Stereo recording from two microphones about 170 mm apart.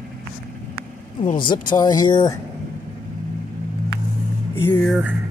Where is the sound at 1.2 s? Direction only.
50° left (ahead or behind).